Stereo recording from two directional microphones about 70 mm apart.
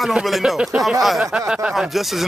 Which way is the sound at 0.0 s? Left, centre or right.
Centre.